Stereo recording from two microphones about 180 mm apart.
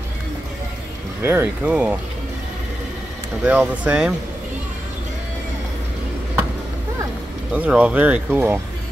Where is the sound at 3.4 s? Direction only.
10° right (ahead or behind).